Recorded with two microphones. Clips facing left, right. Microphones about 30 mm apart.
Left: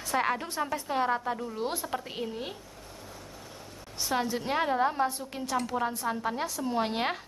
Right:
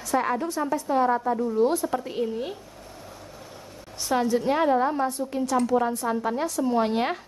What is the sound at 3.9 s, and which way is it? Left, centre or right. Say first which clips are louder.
A woman's voice: right 6 dB; centre.